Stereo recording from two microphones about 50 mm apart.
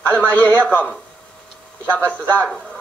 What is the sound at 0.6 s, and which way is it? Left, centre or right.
Speech, left.